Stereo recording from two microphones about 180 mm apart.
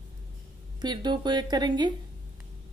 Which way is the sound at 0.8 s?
25° right (ahead or behind).